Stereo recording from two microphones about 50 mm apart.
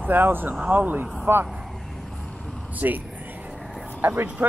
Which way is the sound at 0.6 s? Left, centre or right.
Right.